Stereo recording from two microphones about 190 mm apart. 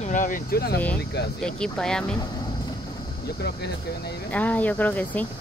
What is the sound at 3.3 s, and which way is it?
Speech, 60° left (ahead or behind).